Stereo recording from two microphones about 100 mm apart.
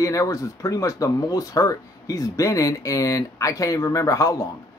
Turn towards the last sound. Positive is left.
turn(degrees=30)  # may be behind; listen again after turning